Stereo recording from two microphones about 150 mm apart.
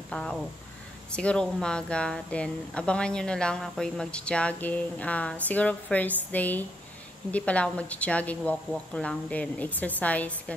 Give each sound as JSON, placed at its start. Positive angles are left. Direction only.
{"t": 0.1, "sound": "speech", "side_deg": 5}